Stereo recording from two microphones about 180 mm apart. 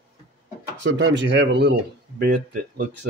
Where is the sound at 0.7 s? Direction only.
90° right; by 2.2 s 65° right (ahead or behind).